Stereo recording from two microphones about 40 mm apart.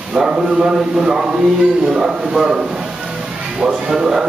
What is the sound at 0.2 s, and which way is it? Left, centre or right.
A man's voice, centre.